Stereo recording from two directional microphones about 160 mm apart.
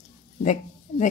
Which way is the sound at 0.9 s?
55° left (ahead or behind).